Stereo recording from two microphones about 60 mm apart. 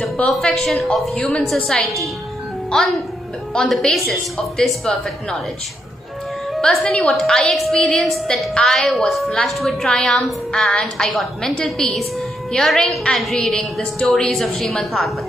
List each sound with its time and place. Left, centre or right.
0.0 s a woman's voice: centre
1.1 s a woman's voice: centre
1.5 s a woman's voice: centre
3.9 s a woman's voice: centre
6.6 s a woman's voice: centre
9.8 s a woman's voice: centre